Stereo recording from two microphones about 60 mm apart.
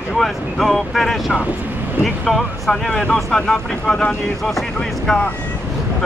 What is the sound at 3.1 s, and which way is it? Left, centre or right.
Speech, centre.